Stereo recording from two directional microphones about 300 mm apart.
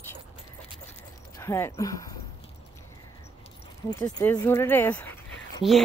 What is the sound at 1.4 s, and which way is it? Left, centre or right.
Speech, centre.